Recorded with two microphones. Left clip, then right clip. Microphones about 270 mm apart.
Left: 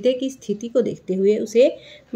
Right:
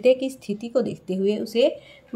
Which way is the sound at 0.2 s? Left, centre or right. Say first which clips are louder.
Left 1 dB; right.